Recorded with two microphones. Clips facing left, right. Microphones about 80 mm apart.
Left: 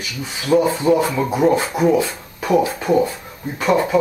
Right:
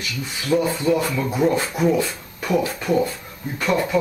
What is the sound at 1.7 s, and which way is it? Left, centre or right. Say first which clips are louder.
Speech: left 3 dB; centre.